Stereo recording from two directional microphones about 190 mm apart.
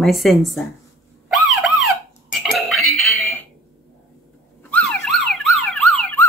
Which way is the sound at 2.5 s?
Centre (ahead or behind).